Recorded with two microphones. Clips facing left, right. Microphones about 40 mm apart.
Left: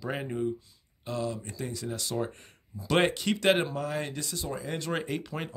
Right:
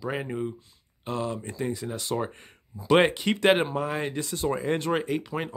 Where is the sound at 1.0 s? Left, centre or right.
Right.